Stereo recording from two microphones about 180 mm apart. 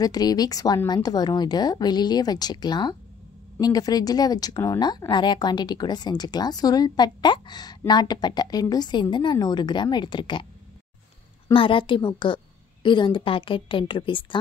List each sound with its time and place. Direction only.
0.0 s a woman's voice: 20° left (ahead or behind)
11.5 s a woman's voice: 30° left (ahead or behind)